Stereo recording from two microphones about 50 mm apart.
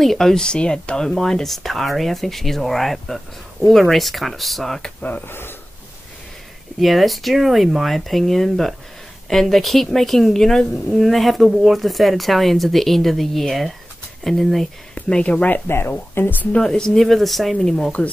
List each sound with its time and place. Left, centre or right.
0.0 s speech: centre
5.2 s speech: left
6.8 s speech: centre
15.0 s speech: left
15.6 s speech: left
16.2 s speech: left
16.6 s speech: centre